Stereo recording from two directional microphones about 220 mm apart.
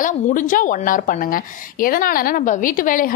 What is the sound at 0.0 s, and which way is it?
A woman's voice, 35° left (ahead or behind).